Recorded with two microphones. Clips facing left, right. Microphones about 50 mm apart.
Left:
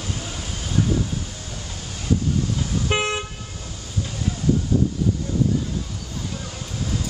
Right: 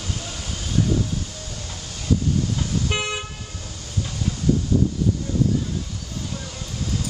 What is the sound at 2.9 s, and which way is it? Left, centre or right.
Toot, centre.